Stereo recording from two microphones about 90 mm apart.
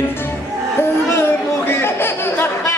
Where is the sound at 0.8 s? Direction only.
25° left (ahead or behind).